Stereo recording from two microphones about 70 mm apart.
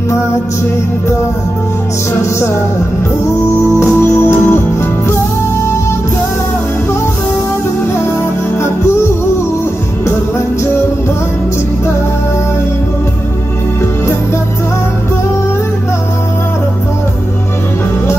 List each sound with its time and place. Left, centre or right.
3.5 s music: left